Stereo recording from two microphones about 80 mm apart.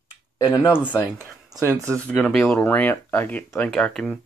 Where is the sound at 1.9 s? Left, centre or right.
Centre.